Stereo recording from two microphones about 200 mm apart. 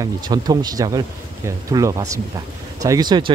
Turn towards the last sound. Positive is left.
turn(degrees=-20)  # may be behind; listen again after turning